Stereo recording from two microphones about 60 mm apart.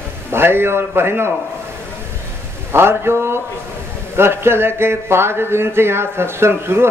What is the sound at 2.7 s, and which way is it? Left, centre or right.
Speech, right.